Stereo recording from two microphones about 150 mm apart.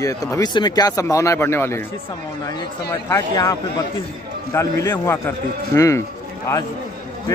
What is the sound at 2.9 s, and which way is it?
Speech, 20° left (ahead or behind).